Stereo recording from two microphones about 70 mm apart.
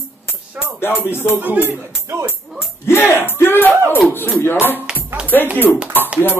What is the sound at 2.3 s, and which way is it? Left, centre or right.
Music, left.